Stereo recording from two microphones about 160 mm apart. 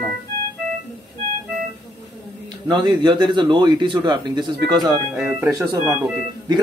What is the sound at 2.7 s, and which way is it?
Speech, 25° right (ahead or behind).